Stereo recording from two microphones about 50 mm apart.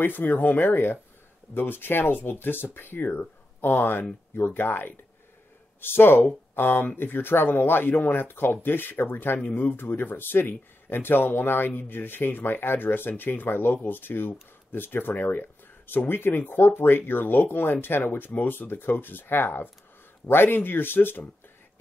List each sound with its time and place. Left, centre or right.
0.0 s speech: left